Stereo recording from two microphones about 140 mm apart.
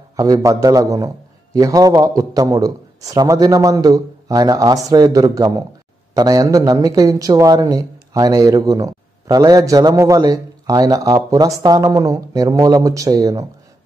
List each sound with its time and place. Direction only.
0.1 s a man's voice: 25° right (ahead or behind)